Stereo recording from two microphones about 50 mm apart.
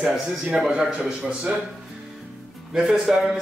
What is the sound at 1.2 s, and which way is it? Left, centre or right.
Speech, centre.